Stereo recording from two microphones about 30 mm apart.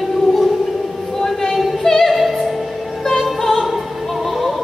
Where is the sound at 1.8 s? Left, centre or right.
Centre.